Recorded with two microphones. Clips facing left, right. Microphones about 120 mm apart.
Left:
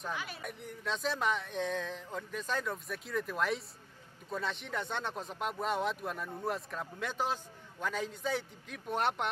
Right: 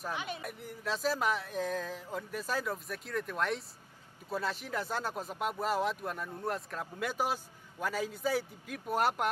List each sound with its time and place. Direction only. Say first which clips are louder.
0.1 s speech: right 3 dB; 20° right (ahead or behind)
0.4 s speech: right 1 dB; 5° right (ahead or behind)